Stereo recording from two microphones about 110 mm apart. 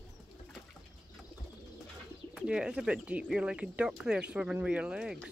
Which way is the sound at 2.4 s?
5° right (ahead or behind).